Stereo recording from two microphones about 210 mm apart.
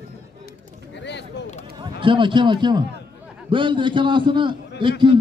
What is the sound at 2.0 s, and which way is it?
A man's voice, 25° right (ahead or behind).